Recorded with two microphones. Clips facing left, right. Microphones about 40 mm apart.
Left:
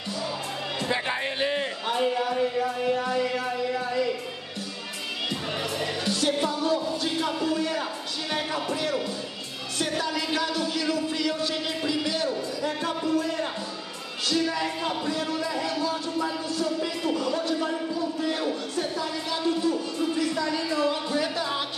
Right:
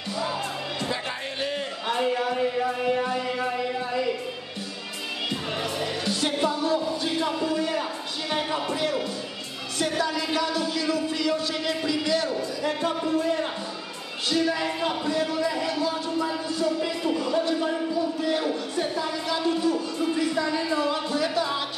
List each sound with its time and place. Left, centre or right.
0.8 s music: left
2.0 s a sound: centre
5.6 s music: centre
8.3 s a sound: centre
9.9 s speech: centre
11.8 s speech: centre
12.8 s speech: right
14.3 s music: centre
16.8 s music: centre
20.2 s speech: right